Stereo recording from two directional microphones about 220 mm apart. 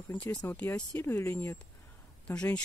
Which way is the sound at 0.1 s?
5° left (ahead or behind).